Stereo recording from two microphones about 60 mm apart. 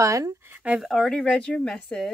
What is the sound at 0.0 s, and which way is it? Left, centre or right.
Speech, right.